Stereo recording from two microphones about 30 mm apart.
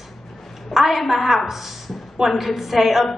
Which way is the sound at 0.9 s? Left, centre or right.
Centre.